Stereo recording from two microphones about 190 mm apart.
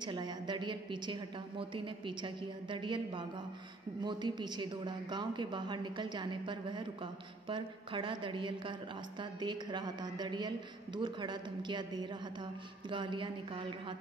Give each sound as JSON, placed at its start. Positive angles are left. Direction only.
{"t": 0.0, "sound": "a woman's voice", "side_deg": -25}